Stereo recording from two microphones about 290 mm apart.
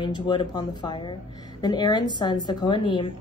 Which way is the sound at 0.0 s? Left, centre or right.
Centre.